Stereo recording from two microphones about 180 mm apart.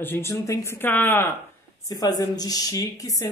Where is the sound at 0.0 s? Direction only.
10° left (ahead or behind).